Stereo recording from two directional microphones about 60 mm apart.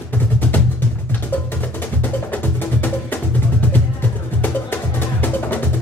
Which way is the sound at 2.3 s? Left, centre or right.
Left.